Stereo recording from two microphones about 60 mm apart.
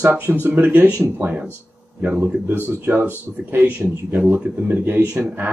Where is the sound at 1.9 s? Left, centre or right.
Right.